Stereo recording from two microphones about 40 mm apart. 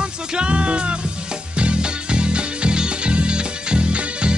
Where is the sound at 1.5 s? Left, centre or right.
Right.